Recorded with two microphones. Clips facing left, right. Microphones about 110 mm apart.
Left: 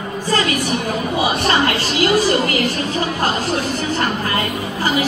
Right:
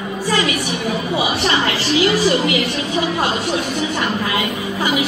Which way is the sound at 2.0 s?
45° left (ahead or behind).